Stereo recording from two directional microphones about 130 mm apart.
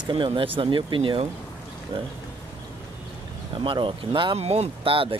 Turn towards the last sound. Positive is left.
turn(degrees=-45)  # may be behind; listen again after turning